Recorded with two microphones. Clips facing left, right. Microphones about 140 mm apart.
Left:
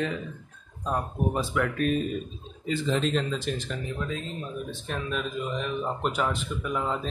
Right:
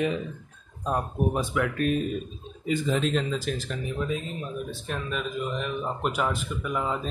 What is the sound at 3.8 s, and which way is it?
Speech, 15° right (ahead or behind).